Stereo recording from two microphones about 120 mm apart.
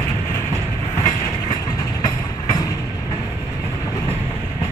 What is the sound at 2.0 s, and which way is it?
Vehicle, 30° left (ahead or behind).